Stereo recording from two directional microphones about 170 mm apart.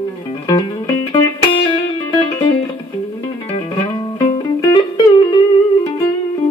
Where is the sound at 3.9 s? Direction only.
20° left (ahead or behind).